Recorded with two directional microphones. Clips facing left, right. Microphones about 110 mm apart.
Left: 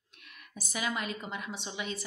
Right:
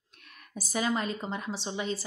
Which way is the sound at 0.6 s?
35° right (ahead or behind).